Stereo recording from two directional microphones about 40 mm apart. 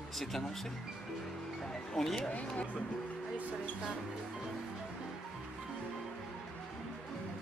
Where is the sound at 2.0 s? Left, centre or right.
Centre.